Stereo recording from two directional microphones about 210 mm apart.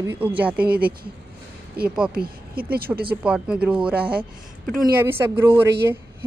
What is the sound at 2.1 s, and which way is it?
Speech, 45° right (ahead or behind).